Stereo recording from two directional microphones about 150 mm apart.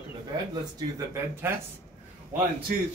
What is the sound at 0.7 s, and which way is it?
Speech, 20° right (ahead or behind).